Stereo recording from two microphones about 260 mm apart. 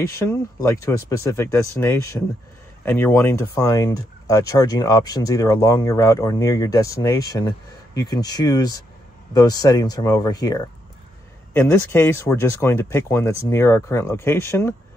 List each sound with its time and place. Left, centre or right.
0.1 s speech: centre